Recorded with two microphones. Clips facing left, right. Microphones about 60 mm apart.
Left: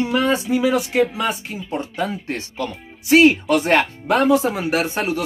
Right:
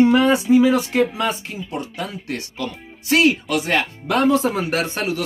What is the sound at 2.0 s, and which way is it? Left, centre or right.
Speech, left.